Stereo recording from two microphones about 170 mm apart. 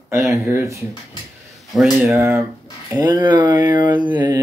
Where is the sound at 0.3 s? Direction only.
15° right (ahead or behind).